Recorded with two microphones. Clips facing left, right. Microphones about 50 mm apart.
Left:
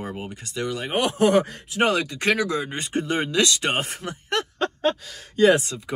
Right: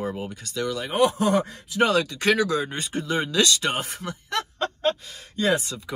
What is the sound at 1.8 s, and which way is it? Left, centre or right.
Speech, left.